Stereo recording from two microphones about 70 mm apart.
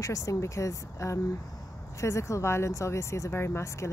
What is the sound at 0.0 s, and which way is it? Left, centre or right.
Speech, left.